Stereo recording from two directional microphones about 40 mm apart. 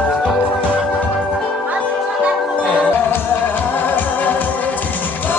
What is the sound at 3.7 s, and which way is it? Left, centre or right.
Music, left.